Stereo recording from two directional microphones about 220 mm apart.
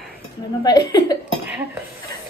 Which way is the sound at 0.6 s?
15° left (ahead or behind).